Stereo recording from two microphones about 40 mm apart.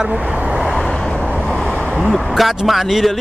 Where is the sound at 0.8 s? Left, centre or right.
Centre.